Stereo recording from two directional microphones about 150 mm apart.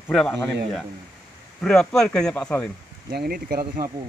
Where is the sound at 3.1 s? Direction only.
85° right.